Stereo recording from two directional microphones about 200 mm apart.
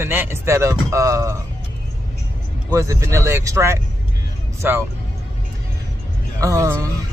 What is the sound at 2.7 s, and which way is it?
Speech, 15° right (ahead or behind).